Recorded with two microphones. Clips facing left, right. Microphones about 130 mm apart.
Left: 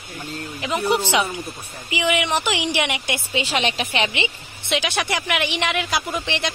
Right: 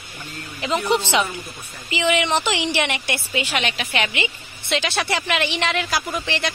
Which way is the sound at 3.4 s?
35° left (ahead or behind).